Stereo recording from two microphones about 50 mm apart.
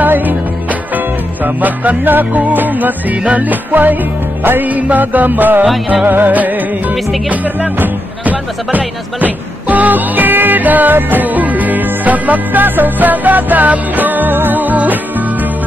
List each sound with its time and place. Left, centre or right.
0.0 s music: right
7.8 s speech: right